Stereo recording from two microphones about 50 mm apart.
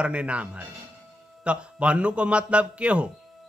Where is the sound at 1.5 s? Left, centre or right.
Right.